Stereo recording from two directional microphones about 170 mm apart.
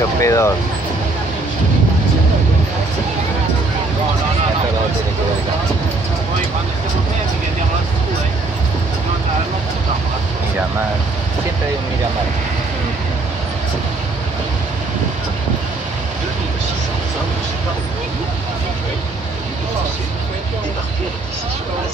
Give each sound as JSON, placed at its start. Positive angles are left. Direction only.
{"t": 0.2, "sound": "speech", "side_deg": 15}